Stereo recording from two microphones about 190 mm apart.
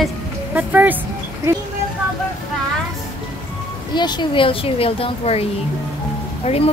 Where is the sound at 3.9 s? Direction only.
25° left (ahead or behind).